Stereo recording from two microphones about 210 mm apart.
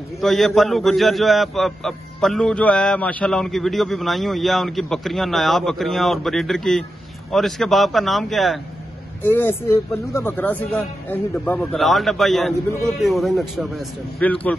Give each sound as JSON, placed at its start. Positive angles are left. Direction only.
{"t": 0.2, "sound": "a man's voice", "side_deg": 0}